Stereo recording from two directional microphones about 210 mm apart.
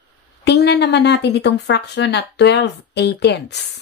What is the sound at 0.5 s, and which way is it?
Speech, 50° left (ahead or behind).